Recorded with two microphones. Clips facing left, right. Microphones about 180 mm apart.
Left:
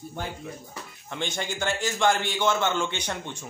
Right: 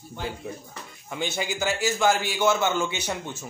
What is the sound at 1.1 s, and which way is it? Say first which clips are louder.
A man's voice: right 2 dB; 5° right (ahead or behind).